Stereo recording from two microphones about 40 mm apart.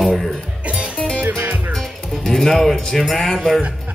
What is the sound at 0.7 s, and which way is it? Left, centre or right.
Music, right.